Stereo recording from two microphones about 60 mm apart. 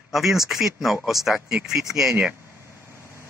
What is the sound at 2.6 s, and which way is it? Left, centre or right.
Vehicle, left.